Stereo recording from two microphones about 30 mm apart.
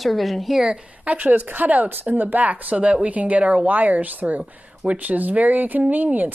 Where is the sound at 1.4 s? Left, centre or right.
Right.